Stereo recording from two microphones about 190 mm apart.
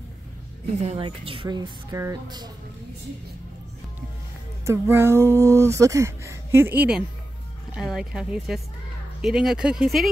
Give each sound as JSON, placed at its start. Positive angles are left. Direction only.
{"t": 0.8, "sound": "a woman's voice", "side_deg": -30}
{"t": 1.9, "sound": "a woman's voice", "side_deg": -15}
{"t": 4.6, "sound": "speech", "side_deg": -15}